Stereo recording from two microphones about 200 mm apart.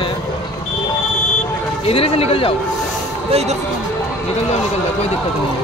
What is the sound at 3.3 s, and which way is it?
Speech, 30° right (ahead or behind).